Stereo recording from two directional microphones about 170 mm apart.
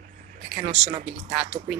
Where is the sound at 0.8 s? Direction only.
35° right (ahead or behind).